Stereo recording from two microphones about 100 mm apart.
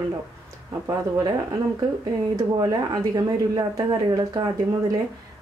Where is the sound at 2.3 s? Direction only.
35° right (ahead or behind).